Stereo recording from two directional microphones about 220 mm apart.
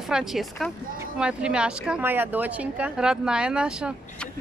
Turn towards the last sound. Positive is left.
turn(degrees=-5)  # may be behind; listen again after turning